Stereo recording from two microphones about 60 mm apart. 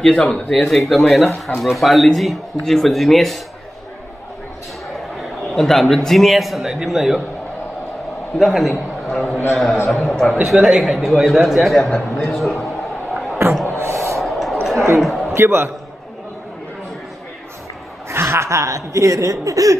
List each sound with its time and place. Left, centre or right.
0.0 s speech: centre
5.1 s a man's voice: centre
8.4 s a man's voice: centre
10.5 s speech: centre
12.6 s a sound: centre
13.7 s gasp: right
14.2 s a sound: centre
15.3 s a man's voice: right
18.1 s speech: right